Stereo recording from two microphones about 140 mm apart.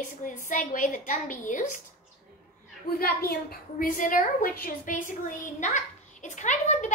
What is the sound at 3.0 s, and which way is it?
Child singing, 90° left.